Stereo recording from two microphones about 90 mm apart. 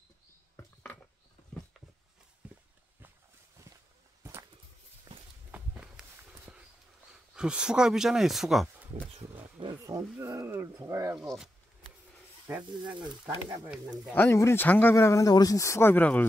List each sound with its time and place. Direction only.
2.4 s a sound: 20° right (ahead or behind)
4.2 s walk: 30° right (ahead or behind)
5.1 s walk: 45° right (ahead or behind)
5.5 s walk: 10° right (ahead or behind)
7.3 s speech: 10° right (ahead or behind)
9.3 s wild animals: 65° right (ahead or behind)
9.8 s a sound: 35° right (ahead or behind)
10.1 s speech: 30° right (ahead or behind)
11.1 s speech: 5° right (ahead or behind)
12.5 s speech: 25° right (ahead or behind)
14.1 s speech: 30° left (ahead or behind)
15.0 s speech: 35° left (ahead or behind)